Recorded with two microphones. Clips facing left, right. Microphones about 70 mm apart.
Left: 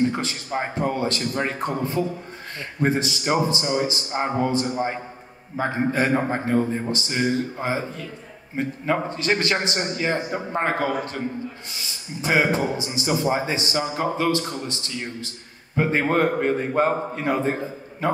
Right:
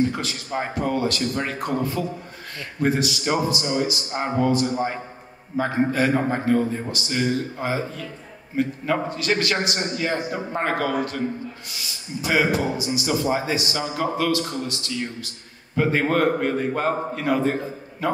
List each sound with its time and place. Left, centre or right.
0.2 s a man's voice: left